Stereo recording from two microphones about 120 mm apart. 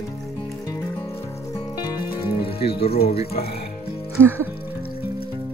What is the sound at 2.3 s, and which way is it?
Speech, 55° left (ahead or behind).